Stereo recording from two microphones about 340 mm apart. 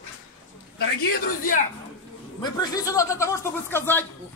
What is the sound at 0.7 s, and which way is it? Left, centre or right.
Speech, left.